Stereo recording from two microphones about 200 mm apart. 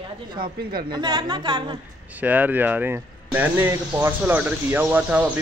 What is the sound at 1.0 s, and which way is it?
Speech, 20° right (ahead or behind).